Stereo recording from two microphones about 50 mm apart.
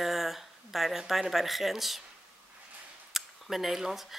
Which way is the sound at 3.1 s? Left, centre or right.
Centre.